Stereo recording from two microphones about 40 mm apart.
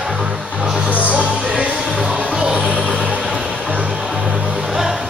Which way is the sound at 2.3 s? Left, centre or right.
Right.